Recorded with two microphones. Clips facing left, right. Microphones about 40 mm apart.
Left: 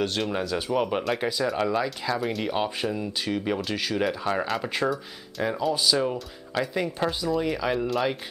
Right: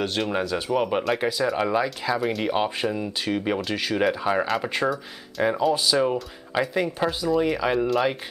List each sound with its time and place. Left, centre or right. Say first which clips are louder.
0.0 s speech: right 2 dB; centre